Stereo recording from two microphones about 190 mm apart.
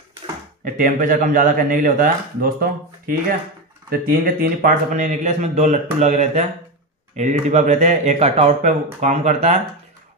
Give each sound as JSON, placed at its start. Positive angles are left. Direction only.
{"t": 0.7, "sound": "a man's voice", "side_deg": -45}